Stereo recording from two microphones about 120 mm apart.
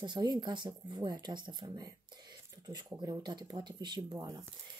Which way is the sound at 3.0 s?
35° right (ahead or behind).